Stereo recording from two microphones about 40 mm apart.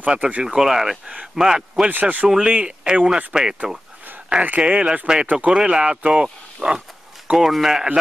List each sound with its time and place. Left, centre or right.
0.0 s speech: right
0.4 s speech: centre
1.9 s speech: right
2.4 s speech: right
3.3 s speech: centre
4.4 s speech: right
5.2 s speech: right
5.5 s speech: right
7.2 s speech: centre